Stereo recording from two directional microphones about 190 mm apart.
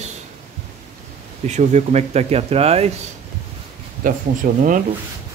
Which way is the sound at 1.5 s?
35° right (ahead or behind).